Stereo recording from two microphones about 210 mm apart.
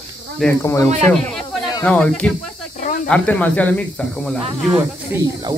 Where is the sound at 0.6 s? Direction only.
15° left (ahead or behind).